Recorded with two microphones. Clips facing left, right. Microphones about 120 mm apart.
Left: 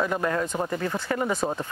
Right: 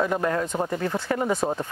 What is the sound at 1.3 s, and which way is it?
Speech, 20° right (ahead or behind).